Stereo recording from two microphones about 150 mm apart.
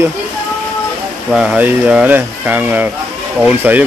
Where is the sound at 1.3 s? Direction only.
5° right (ahead or behind).